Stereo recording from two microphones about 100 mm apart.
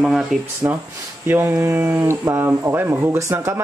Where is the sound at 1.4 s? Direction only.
30° right (ahead or behind).